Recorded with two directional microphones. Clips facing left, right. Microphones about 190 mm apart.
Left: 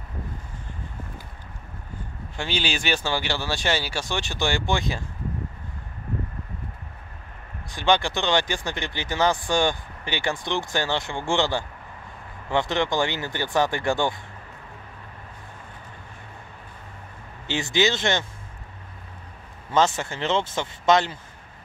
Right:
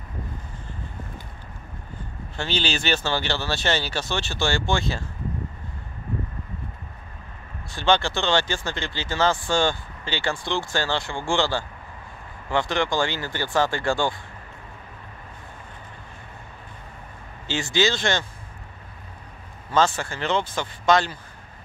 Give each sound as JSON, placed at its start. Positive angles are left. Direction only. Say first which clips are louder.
{"t": 2.3, "sound": "speech", "louder": "right 1 dB", "side_deg": 10}
{"t": 7.7, "sound": "speech", "louder": "even", "side_deg": 15}
{"t": 17.5, "sound": "speech", "louder": "even", "side_deg": 20}
{"t": 19.7, "sound": "speech", "louder": "even", "side_deg": 20}